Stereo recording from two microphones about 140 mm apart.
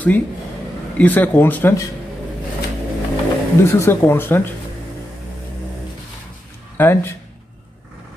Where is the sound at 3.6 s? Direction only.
20° left (ahead or behind).